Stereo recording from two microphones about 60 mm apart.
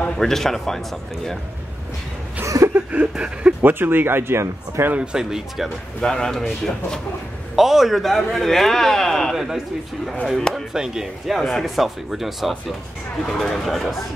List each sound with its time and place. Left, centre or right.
0.2 s speech: centre
2.4 s a sound: right
2.7 s speech: right
3.7 s speech: right
4.9 s speech: centre
5.9 s speech: centre
7.5 s speech: centre
11.3 s speech: centre
13.2 s speech: centre